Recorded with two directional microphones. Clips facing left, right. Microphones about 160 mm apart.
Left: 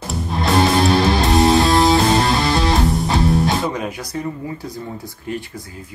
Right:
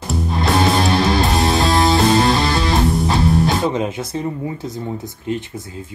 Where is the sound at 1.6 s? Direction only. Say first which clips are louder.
Left 1 dB; centre (ahead or behind).